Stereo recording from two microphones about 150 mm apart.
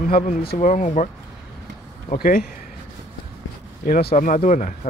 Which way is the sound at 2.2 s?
75° left (ahead or behind).